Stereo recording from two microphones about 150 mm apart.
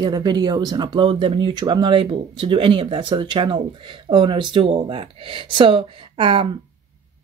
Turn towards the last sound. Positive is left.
turn(degrees=-35)  # may be behind; listen again after turning